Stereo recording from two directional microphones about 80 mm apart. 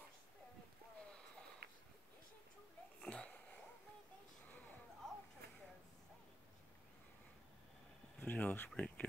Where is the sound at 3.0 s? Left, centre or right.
Centre.